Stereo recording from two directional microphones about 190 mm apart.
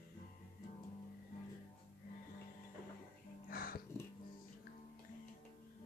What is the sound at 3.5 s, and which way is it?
Music, 50° left (ahead or behind).